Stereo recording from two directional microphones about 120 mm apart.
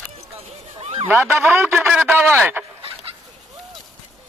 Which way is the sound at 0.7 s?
55° right (ahead or behind).